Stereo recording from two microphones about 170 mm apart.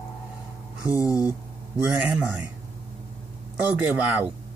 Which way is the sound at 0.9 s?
20° left (ahead or behind).